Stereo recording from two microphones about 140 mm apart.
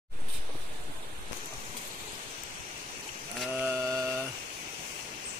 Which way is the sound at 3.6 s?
20° right (ahead or behind).